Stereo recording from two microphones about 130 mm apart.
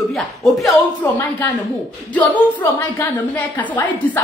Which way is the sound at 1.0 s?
15° left (ahead or behind).